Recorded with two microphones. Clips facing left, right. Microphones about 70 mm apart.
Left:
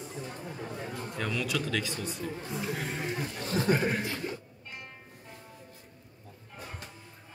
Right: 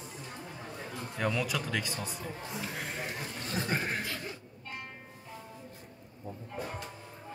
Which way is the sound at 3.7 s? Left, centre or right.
Centre.